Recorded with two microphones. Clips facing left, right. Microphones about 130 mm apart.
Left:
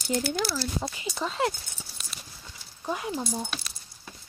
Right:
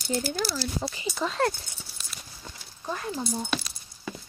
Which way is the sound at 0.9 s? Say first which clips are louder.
Right 2 dB; centre (ahead or behind).